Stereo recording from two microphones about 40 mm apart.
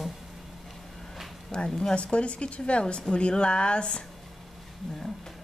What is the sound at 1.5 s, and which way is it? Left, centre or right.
A woman's voice, left.